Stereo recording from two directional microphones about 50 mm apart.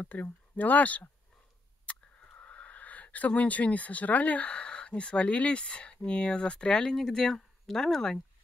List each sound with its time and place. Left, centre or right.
0.0 s speech: left; by 8.2 s centre